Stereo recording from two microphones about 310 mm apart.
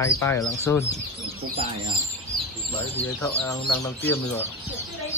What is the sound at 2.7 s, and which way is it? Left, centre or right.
Speech, centre.